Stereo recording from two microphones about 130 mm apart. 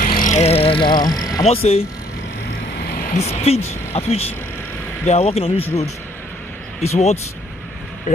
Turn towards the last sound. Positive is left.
turn(degrees=55)  # may be behind; listen again after turning